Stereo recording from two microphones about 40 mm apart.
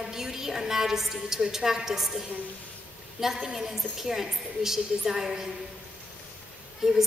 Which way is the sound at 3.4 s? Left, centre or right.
Centre.